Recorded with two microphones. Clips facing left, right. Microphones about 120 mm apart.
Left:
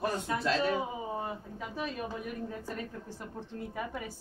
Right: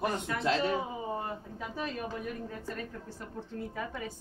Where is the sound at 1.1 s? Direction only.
5° left (ahead or behind).